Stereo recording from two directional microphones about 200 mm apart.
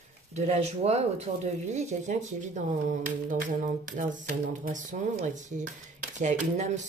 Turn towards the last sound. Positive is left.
turn(degrees=-35)  # may be behind; listen again after turning